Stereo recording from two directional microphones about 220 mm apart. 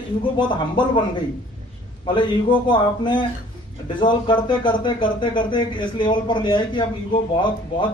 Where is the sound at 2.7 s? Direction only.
20° left (ahead or behind).